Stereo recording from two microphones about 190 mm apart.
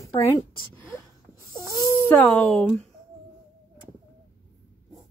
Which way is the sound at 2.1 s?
5° left (ahead or behind).